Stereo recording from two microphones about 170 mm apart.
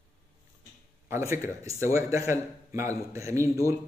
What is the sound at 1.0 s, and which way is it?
A man's voice, 15° right (ahead or behind).